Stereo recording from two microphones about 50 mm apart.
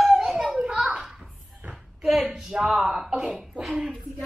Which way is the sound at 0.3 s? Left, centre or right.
Centre.